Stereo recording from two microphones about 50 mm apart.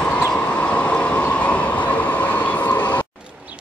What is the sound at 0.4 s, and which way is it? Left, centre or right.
Train, left.